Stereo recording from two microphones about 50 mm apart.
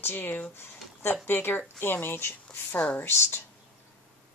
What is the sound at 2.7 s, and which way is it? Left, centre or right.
Speech, left.